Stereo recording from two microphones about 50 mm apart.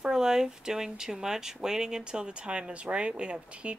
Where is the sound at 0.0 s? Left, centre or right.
Centre.